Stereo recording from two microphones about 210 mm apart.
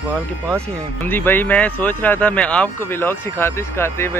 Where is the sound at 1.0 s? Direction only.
10° left (ahead or behind).